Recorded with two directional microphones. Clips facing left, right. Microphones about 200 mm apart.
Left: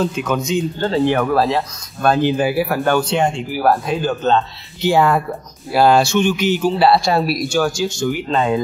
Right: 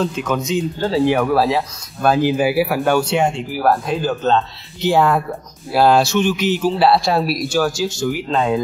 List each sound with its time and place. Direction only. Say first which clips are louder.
0.0 s speech: left 1 dB; centre (ahead or behind)